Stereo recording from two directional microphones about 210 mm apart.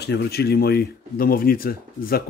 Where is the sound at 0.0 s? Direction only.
50° left (ahead or behind).